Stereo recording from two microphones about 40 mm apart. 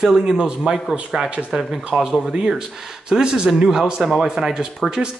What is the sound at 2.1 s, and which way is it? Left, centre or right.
Speech, centre.